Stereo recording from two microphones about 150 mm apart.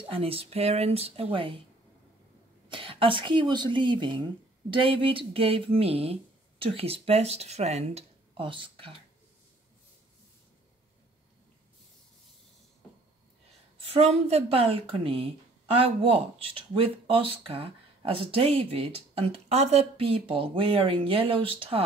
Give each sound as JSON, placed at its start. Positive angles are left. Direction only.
{"t": 0.0, "sound": "a woman's voice", "side_deg": -40}
{"t": 2.7, "sound": "a woman's voice", "side_deg": -35}
{"t": 13.7, "sound": "a woman's voice", "side_deg": -40}